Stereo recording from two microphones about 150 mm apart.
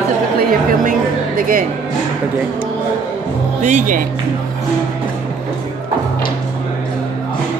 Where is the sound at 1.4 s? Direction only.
70° right (ahead or behind).